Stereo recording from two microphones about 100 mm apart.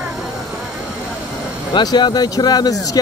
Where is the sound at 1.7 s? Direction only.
50° left (ahead or behind).